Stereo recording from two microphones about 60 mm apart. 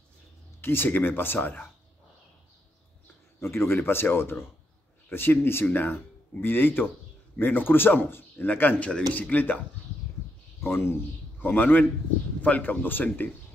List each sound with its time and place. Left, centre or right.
0.6 s speech: left
3.3 s speech: left
10.6 s a man's voice: left
11.4 s speech: left